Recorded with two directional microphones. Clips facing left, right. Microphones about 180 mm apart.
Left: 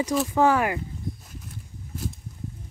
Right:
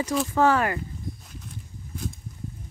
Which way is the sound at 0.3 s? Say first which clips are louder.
Even; 15° left (ahead or behind).